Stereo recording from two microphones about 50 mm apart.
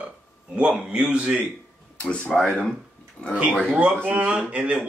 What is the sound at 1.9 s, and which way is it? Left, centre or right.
Speech, left.